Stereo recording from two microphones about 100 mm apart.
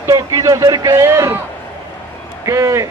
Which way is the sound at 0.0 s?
35° right (ahead or behind).